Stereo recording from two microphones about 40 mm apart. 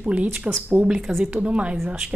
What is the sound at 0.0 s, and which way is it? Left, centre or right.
Speech, right.